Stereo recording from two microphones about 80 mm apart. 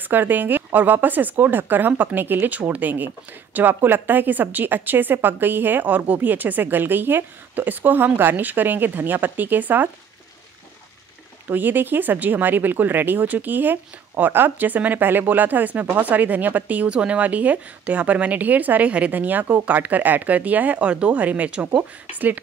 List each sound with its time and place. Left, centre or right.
0.1 s speech: right
11.4 s speech: right